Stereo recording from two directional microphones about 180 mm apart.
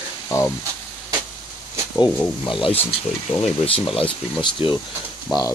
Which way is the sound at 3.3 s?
30° left (ahead or behind).